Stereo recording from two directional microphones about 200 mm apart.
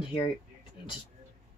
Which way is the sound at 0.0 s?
25° left (ahead or behind).